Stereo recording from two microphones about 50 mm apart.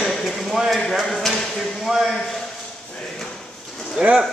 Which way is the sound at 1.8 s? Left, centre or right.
Centre.